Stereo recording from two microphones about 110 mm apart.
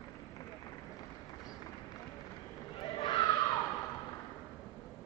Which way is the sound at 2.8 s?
40° left (ahead or behind).